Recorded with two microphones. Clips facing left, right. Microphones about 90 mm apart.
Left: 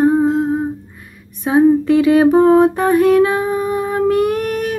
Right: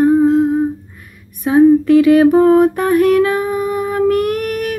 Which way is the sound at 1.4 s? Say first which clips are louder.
Right 2 dB; 20° left (ahead or behind).